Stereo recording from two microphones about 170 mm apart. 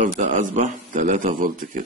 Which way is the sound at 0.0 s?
50° right (ahead or behind).